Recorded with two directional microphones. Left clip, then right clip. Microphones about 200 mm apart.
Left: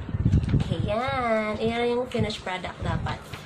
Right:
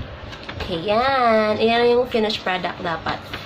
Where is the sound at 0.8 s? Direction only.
20° right (ahead or behind).